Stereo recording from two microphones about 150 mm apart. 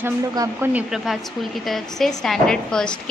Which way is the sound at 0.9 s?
Centre (ahead or behind).